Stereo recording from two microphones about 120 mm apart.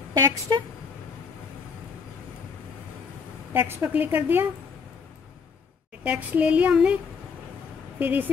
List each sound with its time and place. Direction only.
0.5 s speech: 40° right (ahead or behind)
3.5 s a woman's voice: 20° right (ahead or behind)
6.0 s a woman's voice: 10° right (ahead or behind)
8.0 s a woman's voice: 15° right (ahead or behind)